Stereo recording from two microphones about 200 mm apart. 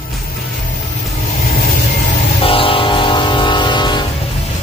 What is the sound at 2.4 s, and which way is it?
Vehicle, 25° left (ahead or behind).